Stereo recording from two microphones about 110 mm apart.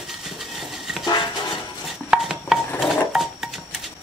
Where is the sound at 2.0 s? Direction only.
5° right (ahead or behind).